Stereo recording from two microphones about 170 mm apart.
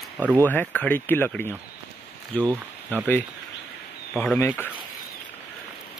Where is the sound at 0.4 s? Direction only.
10° left (ahead or behind).